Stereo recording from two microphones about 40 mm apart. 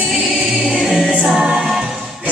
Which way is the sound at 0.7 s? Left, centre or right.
Centre.